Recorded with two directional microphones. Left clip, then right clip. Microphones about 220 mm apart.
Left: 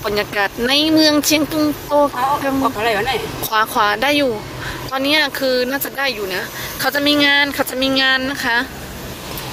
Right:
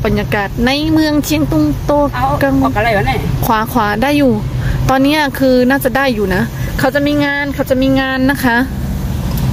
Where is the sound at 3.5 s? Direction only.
15° right (ahead or behind); by 6.4 s 30° right (ahead or behind).